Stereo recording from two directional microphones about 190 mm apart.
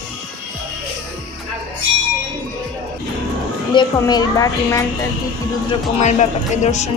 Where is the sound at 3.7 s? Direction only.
20° left (ahead or behind).